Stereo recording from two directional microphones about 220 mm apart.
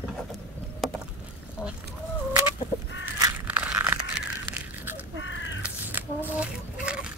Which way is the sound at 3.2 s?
5° right (ahead or behind).